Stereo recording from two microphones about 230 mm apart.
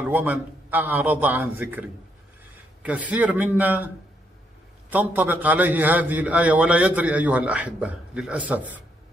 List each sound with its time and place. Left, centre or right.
0.0 s a man's voice: centre
4.9 s a man's voice: centre